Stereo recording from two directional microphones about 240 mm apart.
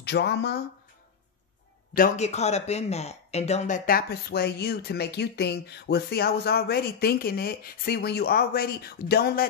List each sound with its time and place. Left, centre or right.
0.0 s speech: left
2.0 s speech: left